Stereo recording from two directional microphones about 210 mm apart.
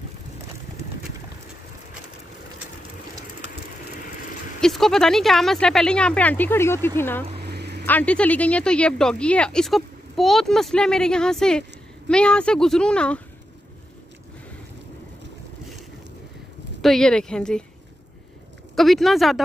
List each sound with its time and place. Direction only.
4.6 s speech: centre (ahead or behind)
7.3 s a sound: 50° right (ahead or behind)
7.8 s speech: 5° left (ahead or behind)
16.8 s speech: centre (ahead or behind)
18.8 s speech: centre (ahead or behind)